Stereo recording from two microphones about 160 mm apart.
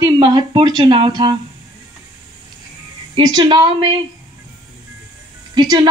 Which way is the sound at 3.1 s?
30° right (ahead or behind).